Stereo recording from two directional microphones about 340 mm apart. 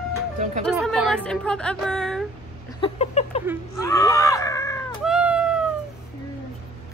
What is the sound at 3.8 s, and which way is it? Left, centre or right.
Screaming, centre.